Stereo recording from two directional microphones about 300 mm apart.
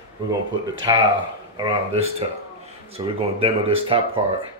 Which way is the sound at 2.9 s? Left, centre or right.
Centre.